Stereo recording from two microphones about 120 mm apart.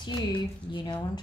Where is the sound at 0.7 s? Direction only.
40° left (ahead or behind).